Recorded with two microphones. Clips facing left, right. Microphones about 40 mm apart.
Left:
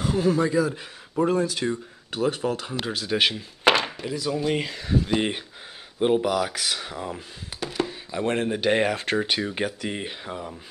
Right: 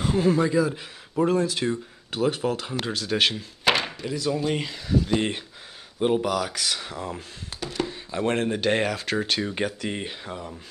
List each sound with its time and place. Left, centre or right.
0.0 s speech: centre
2.7 s speech: centre
4.8 s speech: left
5.1 s speech: centre
8.9 s speech: left
9.2 s speech: centre